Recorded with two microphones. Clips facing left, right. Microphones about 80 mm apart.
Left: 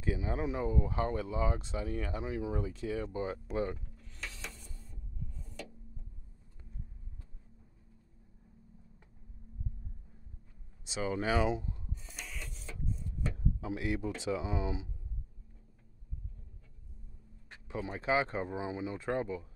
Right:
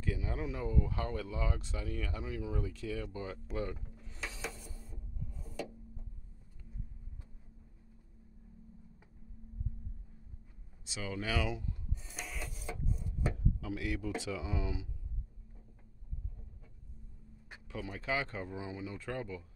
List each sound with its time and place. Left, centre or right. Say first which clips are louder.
0.0 s speech: left 4 dB; left
3.8 s a sound: right 2 dB; centre
10.9 s speech: left 6 dB; left
11.9 s printer: right 2 dB; centre
12.8 s wood: even; centre
13.4 s a sound: left 1 dB; left
14.2 s speech: left 4 dB; left
17.6 s speech: left 5 dB; left